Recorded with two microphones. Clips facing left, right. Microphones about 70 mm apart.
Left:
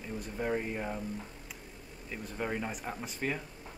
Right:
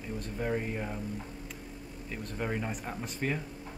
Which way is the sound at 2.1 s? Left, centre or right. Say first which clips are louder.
Right 1 dB; centre.